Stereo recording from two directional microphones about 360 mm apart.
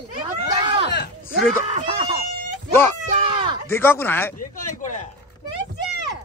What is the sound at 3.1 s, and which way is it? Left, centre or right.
Speech, centre.